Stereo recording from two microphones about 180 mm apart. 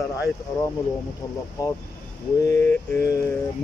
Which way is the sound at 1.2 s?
20° left (ahead or behind).